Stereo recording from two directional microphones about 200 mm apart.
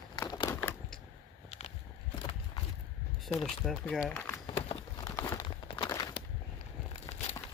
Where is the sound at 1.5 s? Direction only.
30° left (ahead or behind).